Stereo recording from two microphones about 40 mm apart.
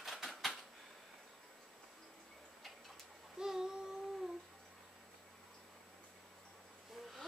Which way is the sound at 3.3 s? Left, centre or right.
Centre.